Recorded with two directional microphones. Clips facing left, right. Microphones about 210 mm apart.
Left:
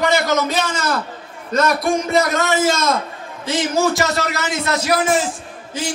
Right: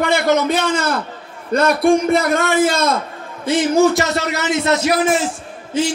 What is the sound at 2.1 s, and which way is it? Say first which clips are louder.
Speech: right 2 dB; 55° right (ahead or behind).